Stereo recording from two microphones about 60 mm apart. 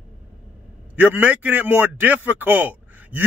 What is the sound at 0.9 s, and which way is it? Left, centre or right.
A man's voice, right.